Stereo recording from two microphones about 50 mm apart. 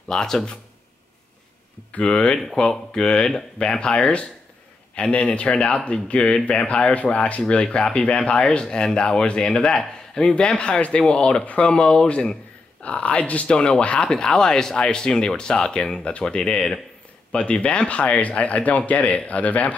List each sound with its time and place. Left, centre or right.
0.1 s speech: centre
1.9 s speech: left
2.4 s speech: centre; by 7.6 s left
7.6 s speech: centre
16.0 s speech: left